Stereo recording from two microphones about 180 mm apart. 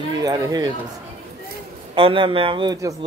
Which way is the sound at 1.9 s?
30° right (ahead or behind).